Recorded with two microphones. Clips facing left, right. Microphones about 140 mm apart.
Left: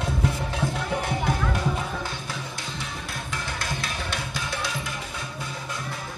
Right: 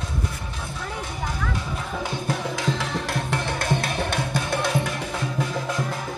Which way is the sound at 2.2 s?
75° right (ahead or behind).